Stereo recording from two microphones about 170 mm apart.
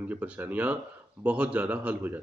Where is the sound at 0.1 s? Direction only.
10° right (ahead or behind).